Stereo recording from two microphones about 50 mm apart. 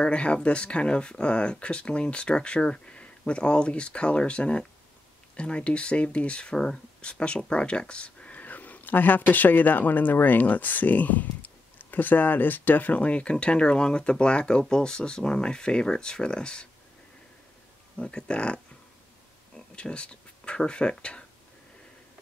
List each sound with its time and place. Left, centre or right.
0.0 s speech: left
17.9 s speech: centre
19.5 s a sound: left
21.0 s speech: left